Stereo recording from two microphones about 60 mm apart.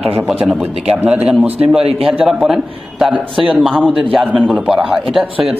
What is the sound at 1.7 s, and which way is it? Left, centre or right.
A man's voice, centre.